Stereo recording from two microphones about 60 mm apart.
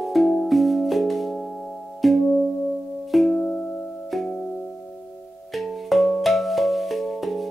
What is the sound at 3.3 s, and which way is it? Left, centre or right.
Music, left.